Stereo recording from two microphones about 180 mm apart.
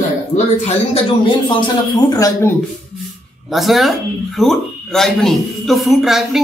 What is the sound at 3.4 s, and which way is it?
Speech, centre (ahead or behind).